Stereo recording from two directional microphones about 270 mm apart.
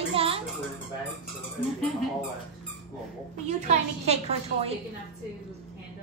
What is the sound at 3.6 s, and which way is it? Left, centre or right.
A woman's voice, right.